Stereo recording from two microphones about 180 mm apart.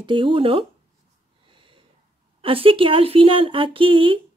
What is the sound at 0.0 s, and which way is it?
Speech, 30° right (ahead or behind).